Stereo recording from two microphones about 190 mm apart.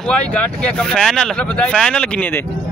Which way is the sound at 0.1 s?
5° left (ahead or behind).